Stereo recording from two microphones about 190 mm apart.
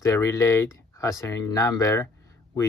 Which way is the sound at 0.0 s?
15° left (ahead or behind).